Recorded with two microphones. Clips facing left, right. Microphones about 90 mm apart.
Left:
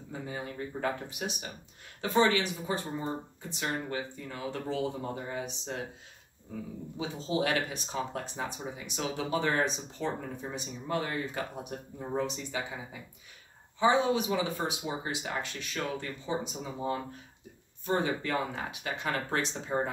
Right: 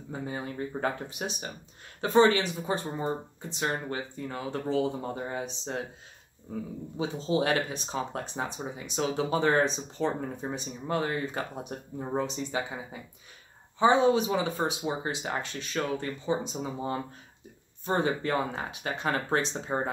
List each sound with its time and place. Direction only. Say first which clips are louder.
0.1 s speech: right 3 dB; 35° right (ahead or behind)
7.0 s speech: right 3 dB; 35° right (ahead or behind)
17.8 s speech: right 2 dB; 35° right (ahead or behind)